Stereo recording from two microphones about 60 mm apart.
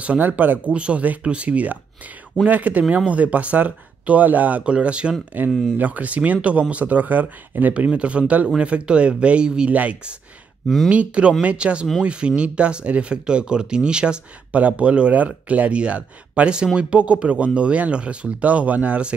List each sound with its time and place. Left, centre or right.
0.4 s speech: right